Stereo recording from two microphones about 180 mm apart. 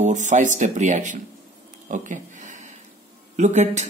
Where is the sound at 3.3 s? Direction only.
40° right (ahead or behind).